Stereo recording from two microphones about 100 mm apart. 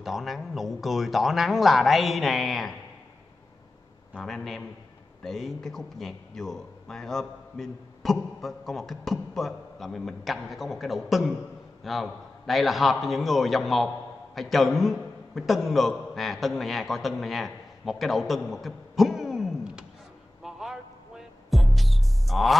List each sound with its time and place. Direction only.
0.0 s a man's voice: centre (ahead or behind)
4.1 s a man's voice: 5° left (ahead or behind)
20.4 s a sound: 5° right (ahead or behind)
21.5 s music: centre (ahead or behind)